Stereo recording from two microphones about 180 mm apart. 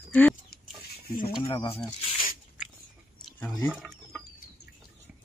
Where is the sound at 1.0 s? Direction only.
55° left (ahead or behind).